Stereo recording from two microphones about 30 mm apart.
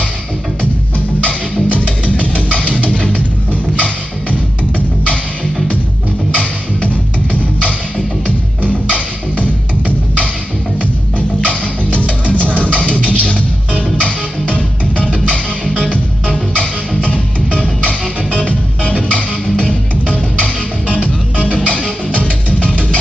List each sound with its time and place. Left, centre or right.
1.8 s music: left
6.3 s music: left
9.4 s music: right
11.1 s music: left
21.5 s music: left